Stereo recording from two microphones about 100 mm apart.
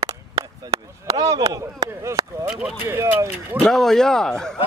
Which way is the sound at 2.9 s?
25° right (ahead or behind).